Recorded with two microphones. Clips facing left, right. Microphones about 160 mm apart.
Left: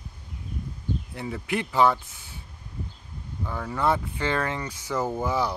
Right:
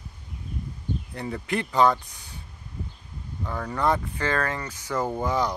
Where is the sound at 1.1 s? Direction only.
5° left (ahead or behind).